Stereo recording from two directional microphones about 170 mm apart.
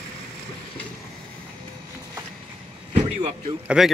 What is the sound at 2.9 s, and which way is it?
Vehicle, 40° right (ahead or behind).